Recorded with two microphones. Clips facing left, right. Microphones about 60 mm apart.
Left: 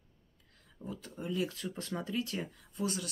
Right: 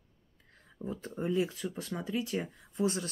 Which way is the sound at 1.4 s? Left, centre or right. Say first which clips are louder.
Right 3 dB; centre.